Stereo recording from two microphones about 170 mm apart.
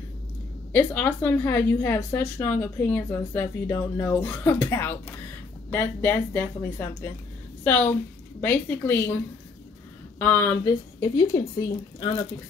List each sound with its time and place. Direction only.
0.7 s speech: 10° left (ahead or behind)